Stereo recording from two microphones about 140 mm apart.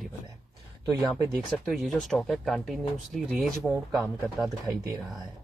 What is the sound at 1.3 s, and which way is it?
Speech, centre (ahead or behind).